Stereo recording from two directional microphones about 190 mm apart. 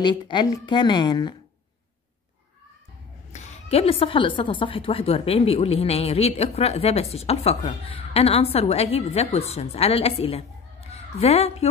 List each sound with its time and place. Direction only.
0.0 s a woman's voice: 25° left (ahead or behind)
3.3 s a woman's voice: 35° left (ahead or behind)